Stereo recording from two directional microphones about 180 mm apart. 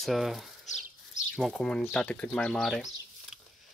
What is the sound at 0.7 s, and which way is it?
Bird, 40° left (ahead or behind).